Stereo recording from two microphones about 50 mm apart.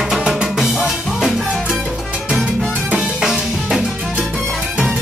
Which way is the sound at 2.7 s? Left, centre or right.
Right.